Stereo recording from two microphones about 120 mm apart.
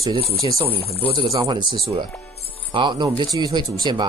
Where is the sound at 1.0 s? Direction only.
50° right (ahead or behind).